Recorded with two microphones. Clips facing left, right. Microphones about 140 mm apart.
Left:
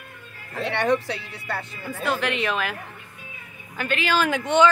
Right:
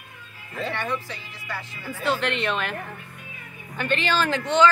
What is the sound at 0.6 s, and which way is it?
Speech, 75° left (ahead or behind).